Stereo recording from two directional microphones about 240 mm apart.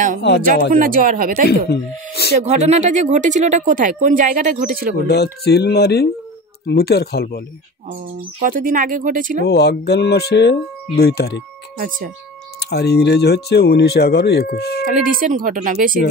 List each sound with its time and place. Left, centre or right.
0.7 s speech: right
1.7 s speech: left
2.3 s speech: right
5.0 s speech: left
8.4 s speech: right
9.5 s speech: left
12.6 s speech: left
14.9 s speech: right